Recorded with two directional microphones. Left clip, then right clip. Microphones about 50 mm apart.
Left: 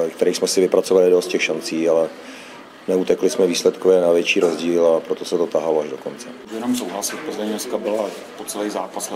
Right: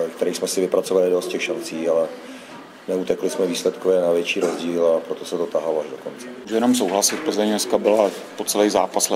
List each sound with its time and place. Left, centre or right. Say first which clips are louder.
0.0 s speech: left 4 dB; centre
6.6 s speech: right 5 dB; right
8.5 s speech: right 7 dB; right